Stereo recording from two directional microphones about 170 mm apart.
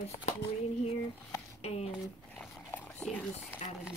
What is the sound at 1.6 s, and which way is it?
Speech, 40° left (ahead or behind).